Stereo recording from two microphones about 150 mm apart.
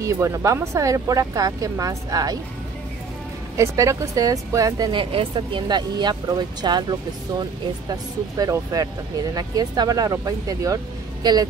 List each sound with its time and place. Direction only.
0.0 s speech: 20° right (ahead or behind)
3.5 s speech: 20° right (ahead or behind)